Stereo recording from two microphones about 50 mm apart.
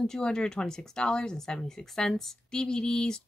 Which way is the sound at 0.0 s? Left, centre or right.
Centre.